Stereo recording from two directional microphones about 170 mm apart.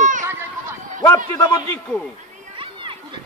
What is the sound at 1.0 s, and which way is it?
Speech, 20° left (ahead or behind).